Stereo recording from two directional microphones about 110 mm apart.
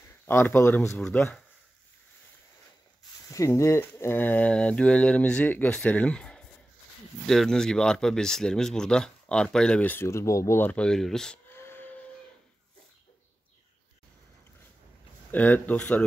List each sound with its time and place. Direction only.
0.3 s speech: 20° left (ahead or behind)
3.3 s speech: 30° left (ahead or behind); by 11.3 s 5° left (ahead or behind)
11.5 s a sound: 20° left (ahead or behind)
15.3 s speech: 15° left (ahead or behind)